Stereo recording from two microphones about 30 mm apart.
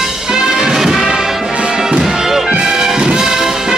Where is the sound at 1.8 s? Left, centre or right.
Centre.